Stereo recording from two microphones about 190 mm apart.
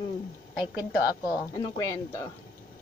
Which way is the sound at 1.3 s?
20° left (ahead or behind).